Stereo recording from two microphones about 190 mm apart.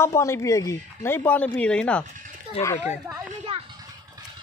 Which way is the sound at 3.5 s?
30° right (ahead or behind).